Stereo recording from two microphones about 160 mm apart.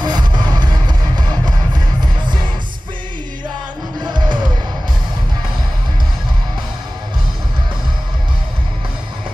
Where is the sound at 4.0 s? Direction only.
30° right (ahead or behind).